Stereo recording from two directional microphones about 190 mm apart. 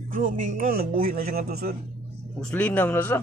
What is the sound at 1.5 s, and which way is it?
Music, 55° right (ahead or behind).